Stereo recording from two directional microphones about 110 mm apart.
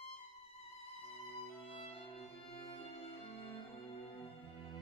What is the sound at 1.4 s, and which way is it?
Music, 60° left (ahead or behind).